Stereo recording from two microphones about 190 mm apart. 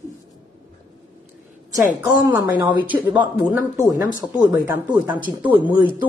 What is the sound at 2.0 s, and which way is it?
Speech, 10° right (ahead or behind).